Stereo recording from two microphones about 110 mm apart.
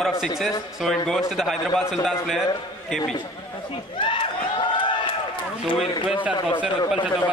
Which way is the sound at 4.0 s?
50° left (ahead or behind).